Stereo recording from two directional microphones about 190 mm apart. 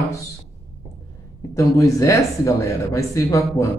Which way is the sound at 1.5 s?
15° left (ahead or behind).